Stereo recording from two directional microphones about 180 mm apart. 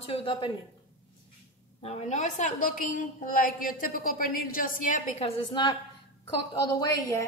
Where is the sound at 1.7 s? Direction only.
35° left (ahead or behind).